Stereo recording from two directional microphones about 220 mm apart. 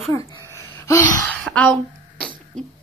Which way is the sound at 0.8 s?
15° left (ahead or behind).